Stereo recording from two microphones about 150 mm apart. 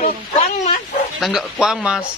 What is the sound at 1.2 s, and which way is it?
Speech, centre (ahead or behind).